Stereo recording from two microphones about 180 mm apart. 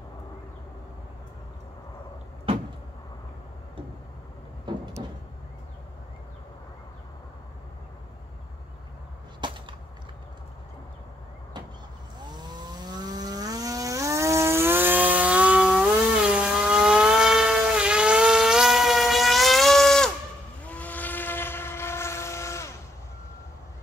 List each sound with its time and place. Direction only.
4.7 s vehicle: 25° right (ahead or behind)
9.4 s whip: 25° right (ahead or behind)
12.3 s vehicle: 25° right (ahead or behind); by 20.1 s centre (ahead or behind)
20.6 s train: 10° left (ahead or behind)